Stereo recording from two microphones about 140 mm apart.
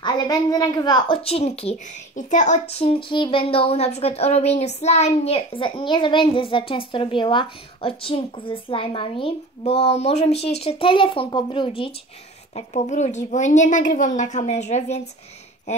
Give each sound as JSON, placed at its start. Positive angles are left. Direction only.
{"t": 0.0, "sound": "speech", "side_deg": 30}
{"t": 2.1, "sound": "speech", "side_deg": 60}
{"t": 12.5, "sound": "a woman's voice", "side_deg": 55}